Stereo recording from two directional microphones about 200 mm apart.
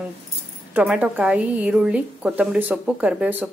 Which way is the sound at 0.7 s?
5° right (ahead or behind).